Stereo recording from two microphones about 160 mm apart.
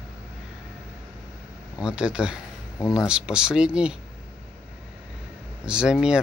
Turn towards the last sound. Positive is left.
turn(degrees=-5)  # may be behind; listen again after turning